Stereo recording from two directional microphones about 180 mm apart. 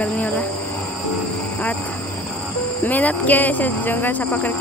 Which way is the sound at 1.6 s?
10° left (ahead or behind).